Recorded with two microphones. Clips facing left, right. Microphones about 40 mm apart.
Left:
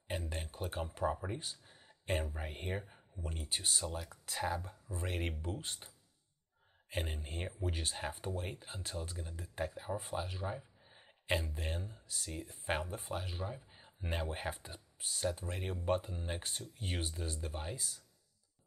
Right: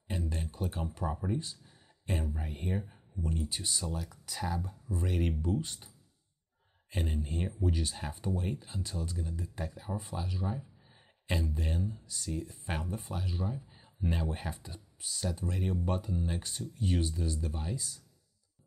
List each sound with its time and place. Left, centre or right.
0.1 s speech: left
2.7 s speech: centre
6.9 s speech: centre